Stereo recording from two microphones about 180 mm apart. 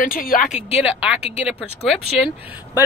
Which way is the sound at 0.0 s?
50° left (ahead or behind).